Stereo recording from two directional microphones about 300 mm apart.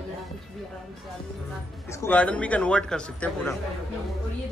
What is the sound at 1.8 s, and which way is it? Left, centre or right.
A man's voice, centre.